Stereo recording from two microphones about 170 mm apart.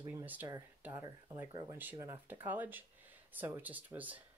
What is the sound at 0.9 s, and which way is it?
Speech, 15° right (ahead or behind).